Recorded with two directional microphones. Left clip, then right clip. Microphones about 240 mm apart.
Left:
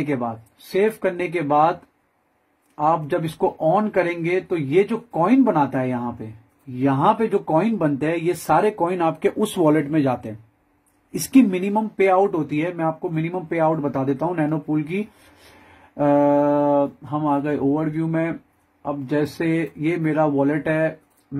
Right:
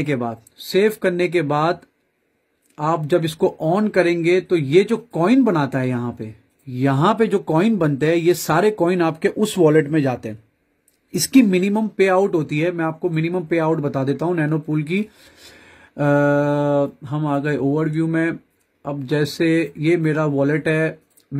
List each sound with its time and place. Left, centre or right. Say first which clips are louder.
0.1 s speech: right 1 dB; right
11.2 s speech: right 2 dB; right
21.3 s a sound: right 1 dB; right